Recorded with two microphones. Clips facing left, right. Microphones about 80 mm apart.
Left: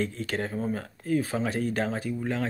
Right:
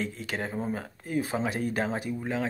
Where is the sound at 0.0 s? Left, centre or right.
Centre.